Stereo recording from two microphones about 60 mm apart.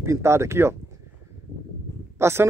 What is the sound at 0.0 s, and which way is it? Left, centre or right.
Speech, right.